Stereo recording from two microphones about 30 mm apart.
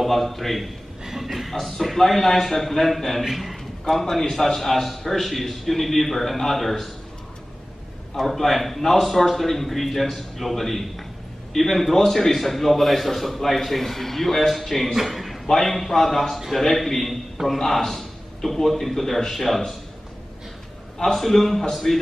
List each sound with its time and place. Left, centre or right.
0.0 s a man's voice: centre
1.0 s a sound: centre
1.3 s a man's voice: centre
3.9 s a man's voice: centre
8.1 s a man's voice: centre
15.0 s a sound: centre
15.4 s a man's voice: centre
21.0 s a man's voice: centre